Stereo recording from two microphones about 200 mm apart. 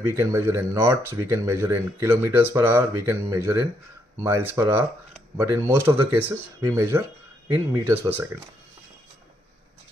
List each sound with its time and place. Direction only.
0.1 s speech: 15° right (ahead or behind)